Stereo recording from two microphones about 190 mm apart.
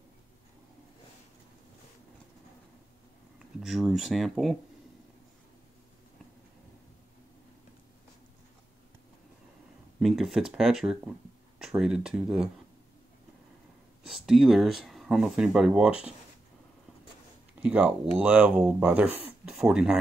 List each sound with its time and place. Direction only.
3.3 s speech: centre (ahead or behind)
9.9 s speech: centre (ahead or behind)
14.0 s speech: centre (ahead or behind)
17.6 s speech: 5° right (ahead or behind)